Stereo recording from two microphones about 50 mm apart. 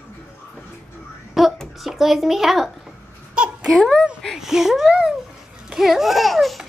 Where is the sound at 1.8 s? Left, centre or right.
Centre.